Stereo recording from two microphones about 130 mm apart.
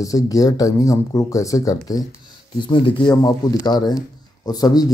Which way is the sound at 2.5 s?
40° left (ahead or behind).